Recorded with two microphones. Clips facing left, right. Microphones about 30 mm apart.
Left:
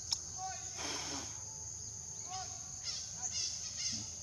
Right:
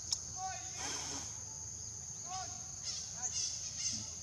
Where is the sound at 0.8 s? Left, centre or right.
Left.